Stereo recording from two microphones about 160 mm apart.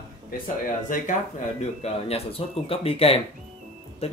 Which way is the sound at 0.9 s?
55° left (ahead or behind).